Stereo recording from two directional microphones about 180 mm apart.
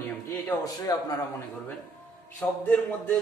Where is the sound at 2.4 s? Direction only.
10° left (ahead or behind).